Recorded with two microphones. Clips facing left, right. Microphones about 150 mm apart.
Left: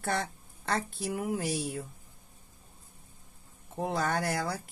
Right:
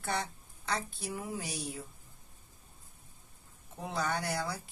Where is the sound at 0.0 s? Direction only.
50° left (ahead or behind).